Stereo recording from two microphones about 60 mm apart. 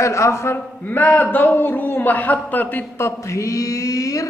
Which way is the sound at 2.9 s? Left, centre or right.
Left.